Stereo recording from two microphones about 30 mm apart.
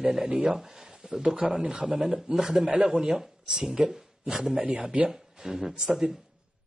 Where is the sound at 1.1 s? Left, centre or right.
Centre.